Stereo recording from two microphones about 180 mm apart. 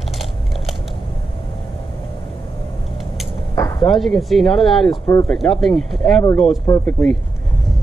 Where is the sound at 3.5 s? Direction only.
20° left (ahead or behind).